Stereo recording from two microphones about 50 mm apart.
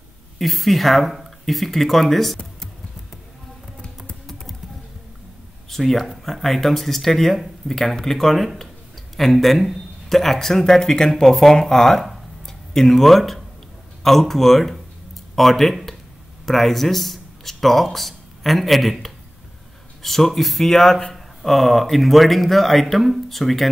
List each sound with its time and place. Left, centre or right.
0.4 s speech: centre
5.7 s speech: centre
15.3 s a sound: centre
16.4 s speech: centre